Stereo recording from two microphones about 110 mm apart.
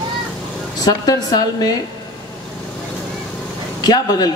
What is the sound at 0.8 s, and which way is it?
Speech, 35° left (ahead or behind).